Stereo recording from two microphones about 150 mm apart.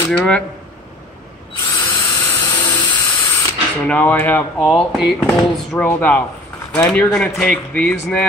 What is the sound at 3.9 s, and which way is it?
Speech, 10° left (ahead or behind).